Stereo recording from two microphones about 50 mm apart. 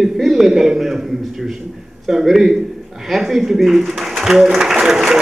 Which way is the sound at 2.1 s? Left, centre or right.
Centre.